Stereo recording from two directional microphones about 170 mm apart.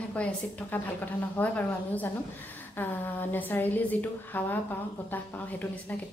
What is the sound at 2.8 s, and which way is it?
A woman's voice, 10° left (ahead or behind).